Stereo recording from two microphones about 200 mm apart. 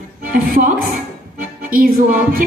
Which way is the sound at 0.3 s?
45° right (ahead or behind).